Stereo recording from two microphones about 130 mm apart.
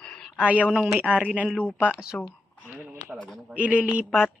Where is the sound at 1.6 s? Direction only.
10° left (ahead or behind).